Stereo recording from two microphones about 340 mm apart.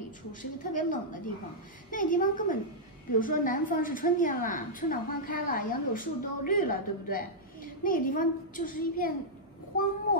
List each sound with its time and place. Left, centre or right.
0.3 s a woman's voice: left